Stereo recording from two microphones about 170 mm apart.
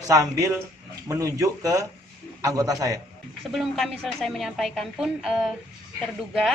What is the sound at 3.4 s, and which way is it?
A woman's voice, centre (ahead or behind).